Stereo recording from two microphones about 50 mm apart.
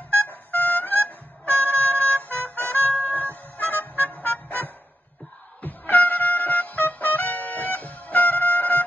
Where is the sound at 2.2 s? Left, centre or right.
Left.